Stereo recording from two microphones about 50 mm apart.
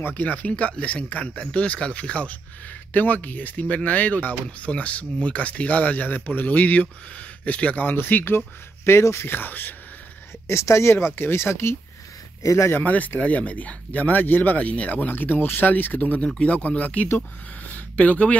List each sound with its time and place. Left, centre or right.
0.1 s speech: left
8.8 s speech: left
10.4 s speech: left
12.4 s speech: left
12.8 s speech: left
17.6 s a sound: left